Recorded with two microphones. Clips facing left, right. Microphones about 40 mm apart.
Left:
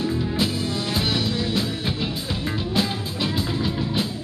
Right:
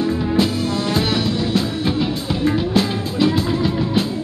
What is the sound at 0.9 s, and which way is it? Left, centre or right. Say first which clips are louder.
Music: right 3 dB; centre.